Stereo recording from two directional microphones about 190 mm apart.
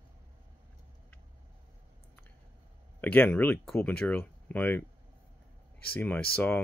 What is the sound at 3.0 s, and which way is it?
Speech, 10° left (ahead or behind).